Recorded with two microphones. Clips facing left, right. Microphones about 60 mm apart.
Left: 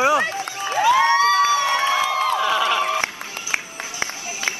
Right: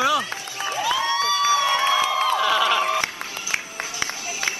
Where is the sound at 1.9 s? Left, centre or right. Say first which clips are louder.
Left 1 dB; left.